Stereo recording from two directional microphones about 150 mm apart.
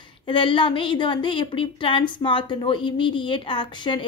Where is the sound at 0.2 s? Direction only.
35° left (ahead or behind).